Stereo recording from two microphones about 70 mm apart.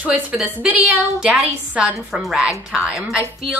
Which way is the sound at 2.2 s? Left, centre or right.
Centre.